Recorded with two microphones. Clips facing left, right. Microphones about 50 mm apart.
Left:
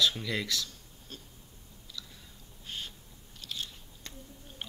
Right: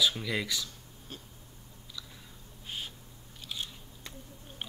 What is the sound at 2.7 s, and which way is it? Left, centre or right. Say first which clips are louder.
Owl: right 1 dB; centre.